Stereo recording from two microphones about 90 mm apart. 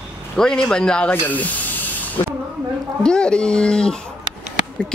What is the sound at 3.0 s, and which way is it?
Speech, 10° left (ahead or behind).